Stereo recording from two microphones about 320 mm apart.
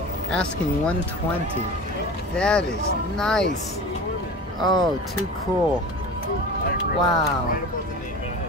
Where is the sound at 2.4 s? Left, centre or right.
Centre.